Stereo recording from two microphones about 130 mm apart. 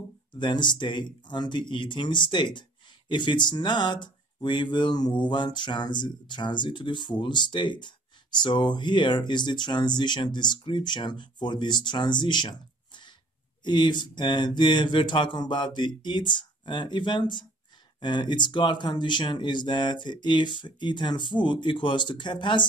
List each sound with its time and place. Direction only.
0.3 s speech: 35° left (ahead or behind)